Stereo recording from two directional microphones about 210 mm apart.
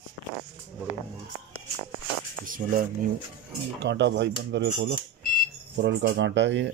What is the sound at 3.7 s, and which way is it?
Speech, 55° right (ahead or behind).